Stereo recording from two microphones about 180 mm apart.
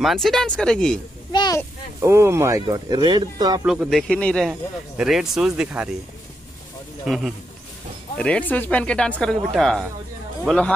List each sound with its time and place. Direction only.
0.0 s speech: centre (ahead or behind)
1.3 s speech: 25° left (ahead or behind)
2.0 s speech: 15° right (ahead or behind)
3.6 s speech: 5° right (ahead or behind)
7.1 s speech: centre (ahead or behind)